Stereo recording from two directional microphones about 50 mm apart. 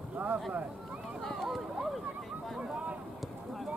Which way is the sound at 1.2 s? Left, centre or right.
Centre.